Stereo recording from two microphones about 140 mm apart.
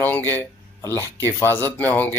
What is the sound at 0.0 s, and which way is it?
A man's voice, 15° left (ahead or behind).